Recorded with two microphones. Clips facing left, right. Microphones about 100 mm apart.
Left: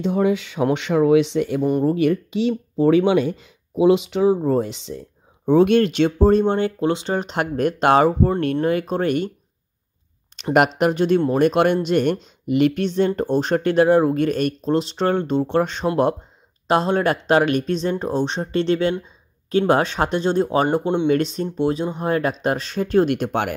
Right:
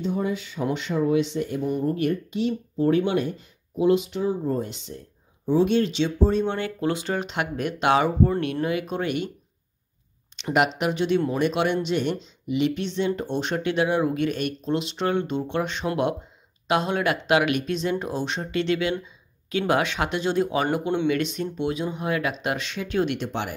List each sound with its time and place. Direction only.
0.0 s speech: 90° left
5.4 s speech: 60° left (ahead or behind)
6.4 s speech: 30° left (ahead or behind)
7.2 s speech: 40° left (ahead or behind)
10.3 s speech: 45° left (ahead or behind)